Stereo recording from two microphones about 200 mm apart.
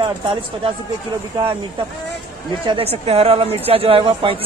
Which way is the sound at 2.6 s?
30° right (ahead or behind).